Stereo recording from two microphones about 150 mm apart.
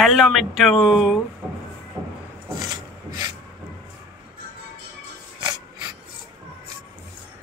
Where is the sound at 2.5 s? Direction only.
25° right (ahead or behind).